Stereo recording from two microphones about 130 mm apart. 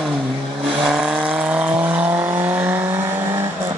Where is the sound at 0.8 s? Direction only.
5° right (ahead or behind).